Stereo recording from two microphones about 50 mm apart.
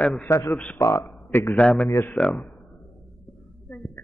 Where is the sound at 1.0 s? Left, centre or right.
Left.